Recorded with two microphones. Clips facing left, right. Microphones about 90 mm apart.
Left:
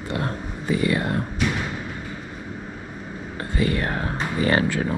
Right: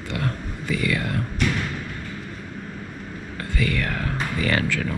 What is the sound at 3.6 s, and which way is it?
Speech, 25° left (ahead or behind).